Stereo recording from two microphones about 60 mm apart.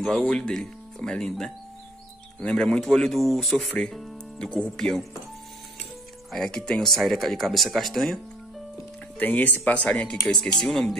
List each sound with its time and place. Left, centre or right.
0.0 s speech: centre
4.4 s speech: centre
6.3 s speech: centre
9.2 s speech: left; by 11.0 s centre